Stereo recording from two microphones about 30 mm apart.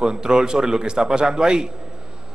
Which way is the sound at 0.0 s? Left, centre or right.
Right.